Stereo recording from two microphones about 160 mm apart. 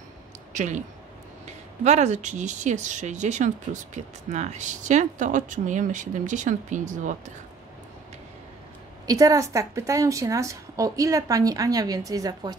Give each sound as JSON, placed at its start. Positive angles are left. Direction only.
{"t": 0.5, "sound": "speech", "side_deg": -50}
{"t": 1.9, "sound": "speech", "side_deg": -45}
{"t": 9.0, "sound": "a woman's voice", "side_deg": -25}